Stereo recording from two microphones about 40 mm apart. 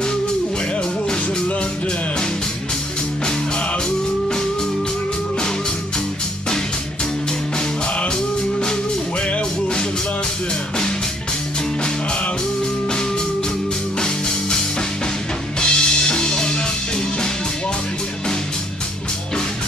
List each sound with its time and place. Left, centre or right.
13.9 s music: centre
15.6 s music: centre